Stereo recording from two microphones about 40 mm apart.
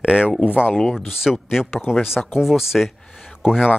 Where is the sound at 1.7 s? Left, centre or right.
Left.